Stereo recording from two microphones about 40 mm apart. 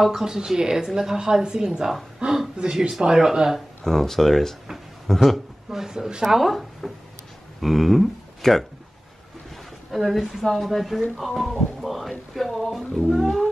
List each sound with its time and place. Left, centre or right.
0.0 s a woman's voice: centre
2.1 s a sound: centre
3.0 s a woman's voice: centre
3.8 s speech: centre
5.7 s a woman's voice: centre
6.3 s a woman's voice: centre
9.8 s a woman's voice: centre
11.8 s a sound: centre
12.5 s music: centre